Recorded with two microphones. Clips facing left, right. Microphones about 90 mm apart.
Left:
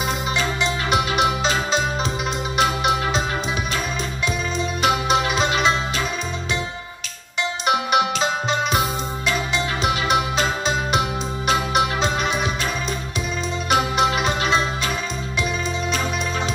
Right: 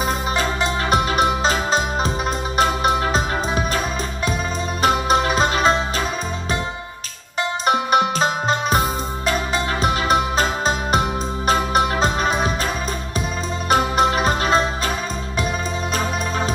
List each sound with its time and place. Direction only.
0.4 s music: 40° right (ahead or behind)
4.8 s music: 40° right (ahead or behind)
7.6 s music: 40° right (ahead or behind)
10.0 s music: 40° right (ahead or behind)
13.7 s music: 40° right (ahead or behind)